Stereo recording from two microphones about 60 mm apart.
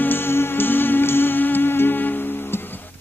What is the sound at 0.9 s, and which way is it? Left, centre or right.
Music, left.